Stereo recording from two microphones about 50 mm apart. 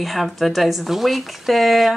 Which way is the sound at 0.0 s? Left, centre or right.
Centre.